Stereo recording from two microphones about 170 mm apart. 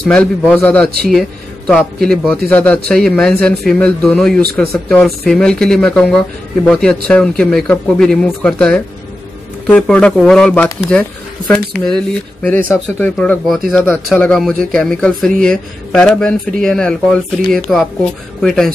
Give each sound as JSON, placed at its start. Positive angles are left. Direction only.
{"t": 0.0, "sound": "a man's voice", "side_deg": 5}